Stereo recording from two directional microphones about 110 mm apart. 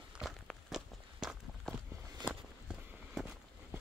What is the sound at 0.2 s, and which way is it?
Walk, 5° right (ahead or behind).